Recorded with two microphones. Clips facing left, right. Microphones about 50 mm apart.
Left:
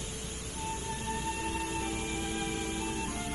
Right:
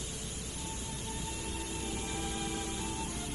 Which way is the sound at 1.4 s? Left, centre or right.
Left.